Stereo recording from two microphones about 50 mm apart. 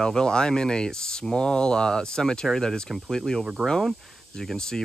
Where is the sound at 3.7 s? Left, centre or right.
Centre.